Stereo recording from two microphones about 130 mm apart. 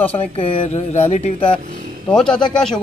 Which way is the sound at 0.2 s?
50° left (ahead or behind).